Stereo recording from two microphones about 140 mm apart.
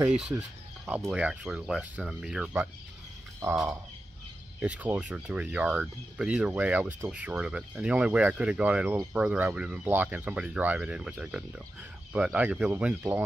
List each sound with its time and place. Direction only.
0.8 s speech: 10° right (ahead or behind)
4.6 s speech: 10° right (ahead or behind)